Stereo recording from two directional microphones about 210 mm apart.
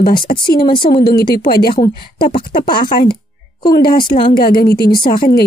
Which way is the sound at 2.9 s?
45° left (ahead or behind).